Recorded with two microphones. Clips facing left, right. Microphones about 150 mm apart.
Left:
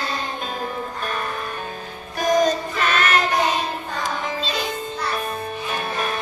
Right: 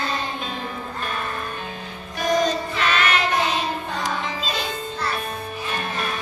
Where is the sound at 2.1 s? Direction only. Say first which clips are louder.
Left 3 dB; 45° left (ahead or behind).